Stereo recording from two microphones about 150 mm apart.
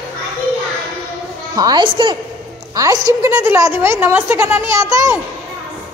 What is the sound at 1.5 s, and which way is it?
A woman's voice, 25° right (ahead or behind).